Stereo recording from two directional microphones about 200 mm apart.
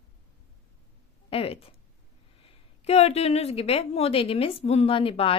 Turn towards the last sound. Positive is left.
turn(degrees=25)  # may be behind; listen again after turning